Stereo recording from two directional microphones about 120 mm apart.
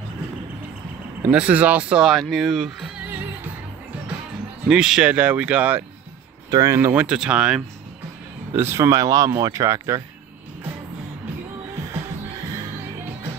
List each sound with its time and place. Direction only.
1.2 s speech: 10° right (ahead or behind)
4.6 s speech: 5° right (ahead or behind)
6.5 s speech: 30° right (ahead or behind)
6.8 s speech: 10° right (ahead or behind)
8.5 s speech: 20° right (ahead or behind)